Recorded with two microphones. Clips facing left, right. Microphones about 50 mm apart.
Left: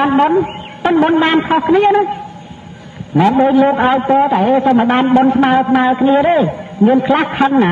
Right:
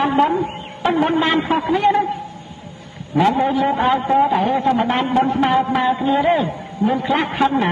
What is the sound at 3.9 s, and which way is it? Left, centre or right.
A man's voice, left.